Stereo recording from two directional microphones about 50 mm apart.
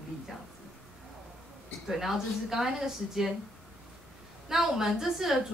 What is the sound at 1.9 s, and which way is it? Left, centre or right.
A woman's voice, centre.